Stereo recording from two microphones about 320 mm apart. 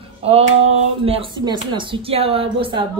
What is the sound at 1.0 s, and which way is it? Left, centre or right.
Speech, centre.